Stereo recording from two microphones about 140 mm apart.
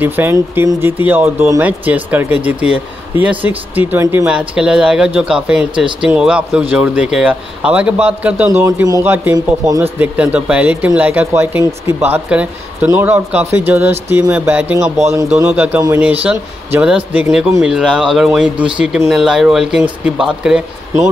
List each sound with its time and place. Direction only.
0.0 s speech: 15° right (ahead or behind)
4.3 s speech: 10° right (ahead or behind)
8.8 s a man's voice: 20° right (ahead or behind); by 20.6 s 5° right (ahead or behind)